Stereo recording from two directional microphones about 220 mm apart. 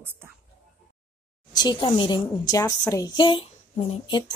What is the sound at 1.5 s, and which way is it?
A woman's voice, 20° left (ahead or behind).